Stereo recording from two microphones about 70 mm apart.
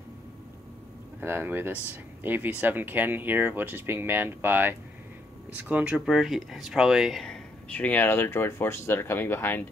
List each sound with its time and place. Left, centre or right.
1.2 s speech: right
5.9 s speech: centre
7.7 s speech: left